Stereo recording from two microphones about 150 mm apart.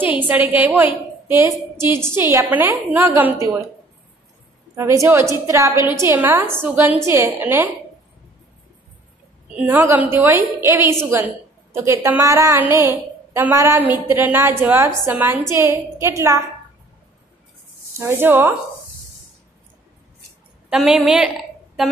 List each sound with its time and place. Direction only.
0.0 s a woman's voice: 10° right (ahead or behind)
4.7 s a woman's voice: 20° right (ahead or behind)
9.6 s a woman's voice: 15° right (ahead or behind)
17.9 s a woman's voice: 15° right (ahead or behind)
20.7 s a woman's voice: 5° right (ahead or behind)